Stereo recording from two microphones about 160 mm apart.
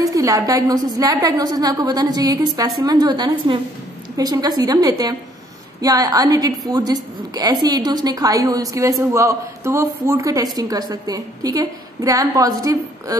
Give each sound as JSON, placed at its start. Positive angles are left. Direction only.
{"t": 0.0, "sound": "a woman's voice", "side_deg": -20}